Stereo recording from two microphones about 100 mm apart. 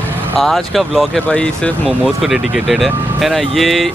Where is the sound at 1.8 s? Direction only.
5° right (ahead or behind).